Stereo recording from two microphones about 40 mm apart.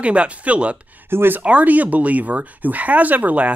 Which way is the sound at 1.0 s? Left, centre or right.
Right.